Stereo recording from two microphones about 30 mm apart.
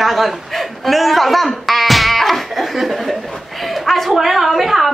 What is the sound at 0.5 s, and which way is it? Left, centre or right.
Dog, centre.